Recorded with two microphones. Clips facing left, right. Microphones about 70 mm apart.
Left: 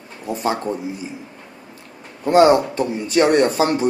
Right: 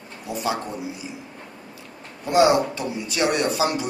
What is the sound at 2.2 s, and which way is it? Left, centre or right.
A man's voice, left.